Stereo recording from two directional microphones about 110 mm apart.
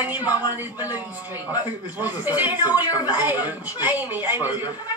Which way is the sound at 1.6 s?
15° right (ahead or behind).